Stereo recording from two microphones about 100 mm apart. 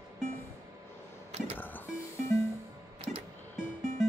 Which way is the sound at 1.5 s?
20° left (ahead or behind).